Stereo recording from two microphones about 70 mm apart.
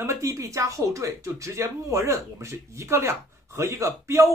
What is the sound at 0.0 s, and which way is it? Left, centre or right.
Speech, right.